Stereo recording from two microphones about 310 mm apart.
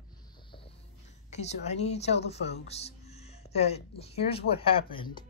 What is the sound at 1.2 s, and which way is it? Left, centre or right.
Speech, left.